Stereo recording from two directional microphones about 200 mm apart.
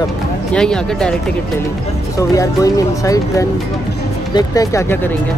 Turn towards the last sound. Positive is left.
turn(degrees=10)  # may be behind; listen again after turning